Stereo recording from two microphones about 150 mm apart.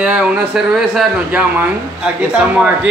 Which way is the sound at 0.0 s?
10° right (ahead or behind).